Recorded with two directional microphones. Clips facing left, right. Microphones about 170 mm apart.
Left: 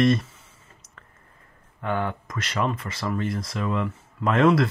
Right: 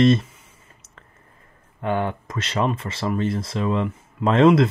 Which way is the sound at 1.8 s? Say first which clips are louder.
Right 3 dB; 20° right (ahead or behind).